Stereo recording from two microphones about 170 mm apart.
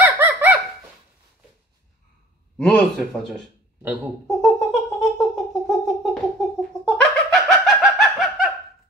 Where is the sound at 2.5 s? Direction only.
5° left (ahead or behind).